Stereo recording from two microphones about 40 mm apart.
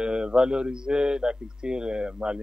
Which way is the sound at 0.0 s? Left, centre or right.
Right.